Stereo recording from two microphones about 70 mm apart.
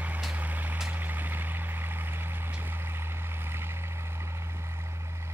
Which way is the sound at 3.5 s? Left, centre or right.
Right.